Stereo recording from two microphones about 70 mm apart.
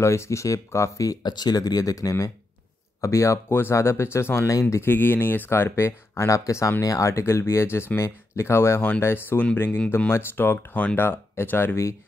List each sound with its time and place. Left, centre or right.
0.0 s speech: left
1.2 s speech: left
3.0 s speech: left
4.5 s speech: left
4.8 s speech: left